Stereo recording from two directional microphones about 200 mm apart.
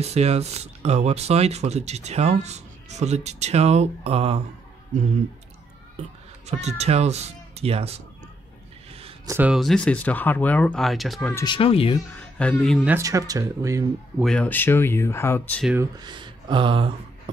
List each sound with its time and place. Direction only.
0.0 s speech: 30° right (ahead or behind)
6.4 s speech: 35° right (ahead or behind)
9.2 s speech: 10° right (ahead or behind)
11.3 s speech: 25° left (ahead or behind)
12.1 s speech: 5° left (ahead or behind); by 14.2 s 15° right (ahead or behind)
14.2 s speech: 5° left (ahead or behind)
15.6 s speech: 10° right (ahead or behind)
16.0 s a sound: 25° right (ahead or behind)